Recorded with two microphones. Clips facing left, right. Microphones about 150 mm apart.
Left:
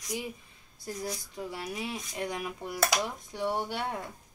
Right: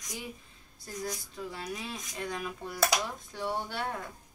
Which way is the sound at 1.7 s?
20° left (ahead or behind).